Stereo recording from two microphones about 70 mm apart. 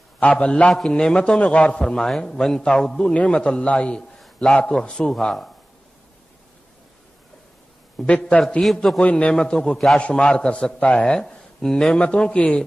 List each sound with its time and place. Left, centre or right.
0.2 s a man's voice: centre
8.1 s a man's voice: centre
9.0 s a man's voice: centre
9.4 s a man's voice: centre
11.1 s a man's voice: centre